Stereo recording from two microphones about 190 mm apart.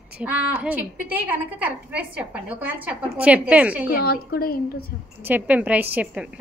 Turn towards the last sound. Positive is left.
turn(degrees=-5)  # may be behind; listen again after turning